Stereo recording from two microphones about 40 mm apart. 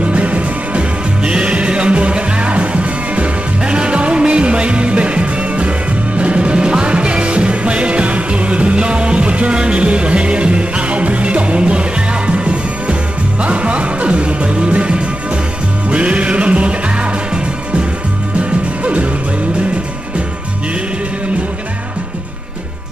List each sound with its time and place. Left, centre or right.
0.0 s music: right
18.4 s music: right